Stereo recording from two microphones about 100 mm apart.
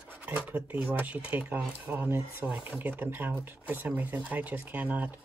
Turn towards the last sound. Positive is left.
turn(degrees=-15)  # may be behind; listen again after turning